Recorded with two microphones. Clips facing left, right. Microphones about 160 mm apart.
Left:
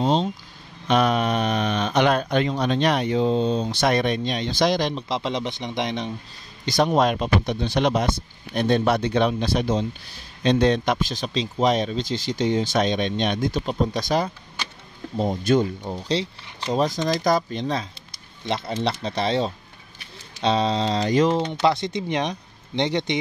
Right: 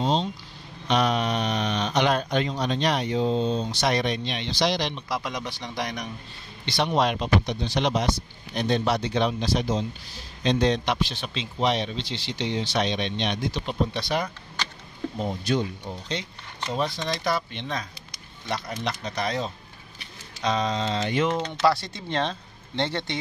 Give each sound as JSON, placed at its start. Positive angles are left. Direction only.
{"t": 0.0, "sound": "vehicle", "side_deg": 55}
{"t": 0.8, "sound": "speech", "side_deg": 50}
{"t": 4.9, "sound": "speech", "side_deg": 25}
{"t": 6.6, "sound": "speech", "side_deg": 45}
{"t": 16.2, "sound": "speech", "side_deg": 35}